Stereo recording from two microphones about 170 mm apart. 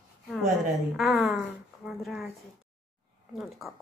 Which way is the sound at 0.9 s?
Centre (ahead or behind).